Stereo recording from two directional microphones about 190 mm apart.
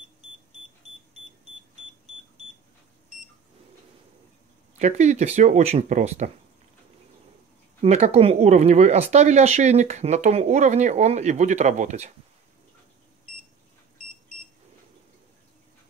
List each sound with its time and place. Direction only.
4.7 s speech: 35° right (ahead or behind)
7.8 s speech: 35° right (ahead or behind)